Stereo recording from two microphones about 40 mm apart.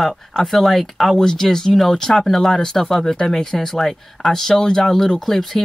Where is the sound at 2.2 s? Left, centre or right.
Centre.